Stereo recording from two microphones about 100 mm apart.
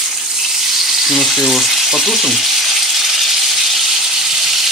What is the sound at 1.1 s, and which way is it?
Speech, centre (ahead or behind).